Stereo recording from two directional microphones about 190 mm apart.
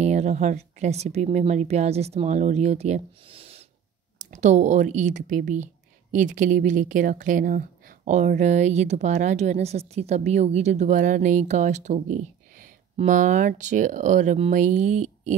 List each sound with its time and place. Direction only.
0.0 s a woman's voice: 35° right (ahead or behind)